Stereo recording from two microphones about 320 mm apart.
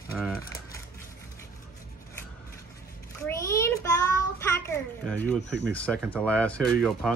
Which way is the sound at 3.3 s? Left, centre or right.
Centre.